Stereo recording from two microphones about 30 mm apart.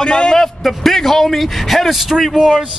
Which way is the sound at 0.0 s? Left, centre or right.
Left.